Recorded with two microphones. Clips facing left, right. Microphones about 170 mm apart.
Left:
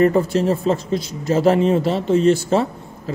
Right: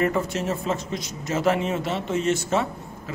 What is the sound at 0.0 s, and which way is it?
A man's voice, 35° left (ahead or behind).